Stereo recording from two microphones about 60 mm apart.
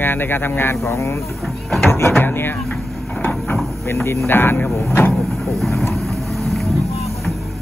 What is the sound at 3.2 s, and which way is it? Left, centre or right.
Vehicle, left.